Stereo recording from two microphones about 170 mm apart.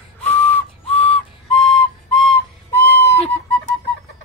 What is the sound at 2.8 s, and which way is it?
Whistle, 70° left (ahead or behind).